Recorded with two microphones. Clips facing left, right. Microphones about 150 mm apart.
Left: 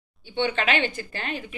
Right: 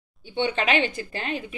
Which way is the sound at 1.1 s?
30° right (ahead or behind).